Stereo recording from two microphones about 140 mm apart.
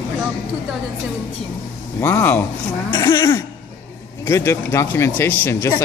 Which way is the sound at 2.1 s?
15° left (ahead or behind).